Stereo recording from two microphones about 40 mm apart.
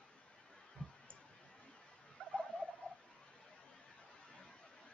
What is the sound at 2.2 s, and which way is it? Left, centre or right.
Turkey, left.